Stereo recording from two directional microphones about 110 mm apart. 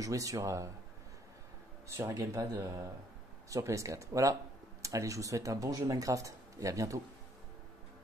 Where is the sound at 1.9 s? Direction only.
30° right (ahead or behind).